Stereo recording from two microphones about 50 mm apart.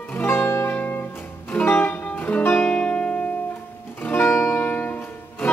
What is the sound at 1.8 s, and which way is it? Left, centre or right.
Music, left.